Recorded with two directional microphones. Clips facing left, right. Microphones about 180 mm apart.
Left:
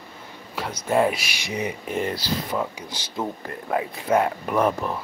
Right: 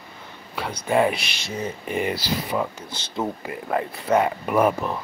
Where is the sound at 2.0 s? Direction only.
5° right (ahead or behind).